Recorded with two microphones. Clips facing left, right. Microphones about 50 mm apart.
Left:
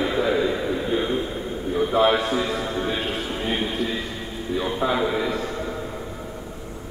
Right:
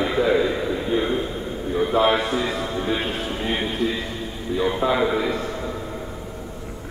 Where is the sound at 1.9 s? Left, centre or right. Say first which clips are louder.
Even; centre.